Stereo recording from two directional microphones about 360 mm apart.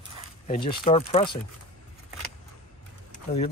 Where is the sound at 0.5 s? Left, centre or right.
Centre.